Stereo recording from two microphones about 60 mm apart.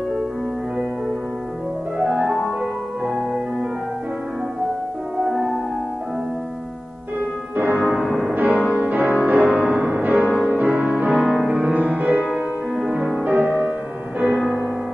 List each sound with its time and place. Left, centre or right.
2.0 s music: centre
5.2 s music: centre
7.5 s music: right
8.0 s music: centre
8.4 s music: right
11.1 s music: centre
11.7 s music: right
12.3 s music: centre
13.2 s music: right